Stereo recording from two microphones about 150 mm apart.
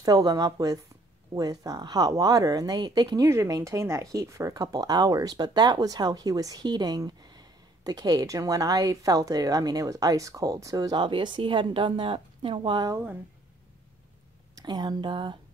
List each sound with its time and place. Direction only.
0.0 s speech: 25° right (ahead or behind)
14.5 s speech: 25° right (ahead or behind)